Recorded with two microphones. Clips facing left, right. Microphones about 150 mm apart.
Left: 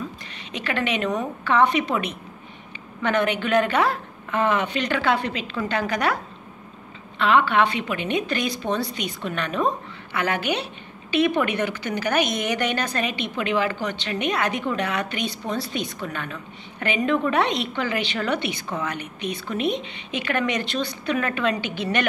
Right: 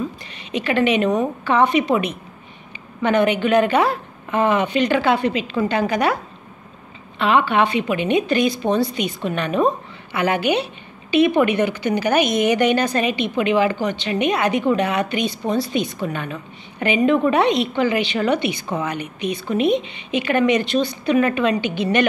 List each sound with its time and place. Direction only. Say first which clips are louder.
0.5 s a woman's voice: right 7 dB; 15° right (ahead or behind)
7.2 s a woman's voice: right 2 dB; 10° right (ahead or behind)
15.5 s a woman's voice: right 6 dB; centre (ahead or behind)
21.5 s a woman's voice: right 6 dB; centre (ahead or behind)